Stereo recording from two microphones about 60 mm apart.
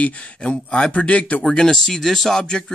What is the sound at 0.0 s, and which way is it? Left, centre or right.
Speech, centre.